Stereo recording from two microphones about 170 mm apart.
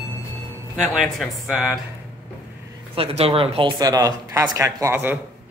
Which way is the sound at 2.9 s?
35° right (ahead or behind).